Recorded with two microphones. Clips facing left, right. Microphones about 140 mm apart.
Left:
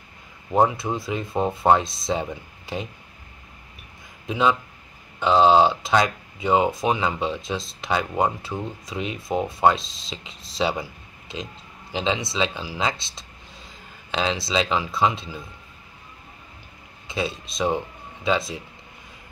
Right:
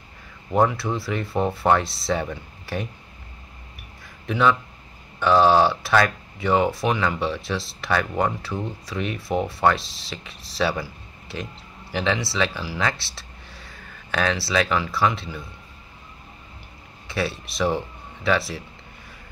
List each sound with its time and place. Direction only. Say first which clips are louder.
0.6 s speech: even; 20° left (ahead or behind)
4.3 s speech: right 1 dB; 20° left (ahead or behind)
17.1 s speech: right 1 dB; 20° left (ahead or behind)